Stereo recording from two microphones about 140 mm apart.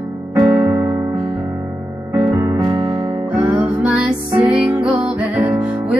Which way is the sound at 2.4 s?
25° right (ahead or behind).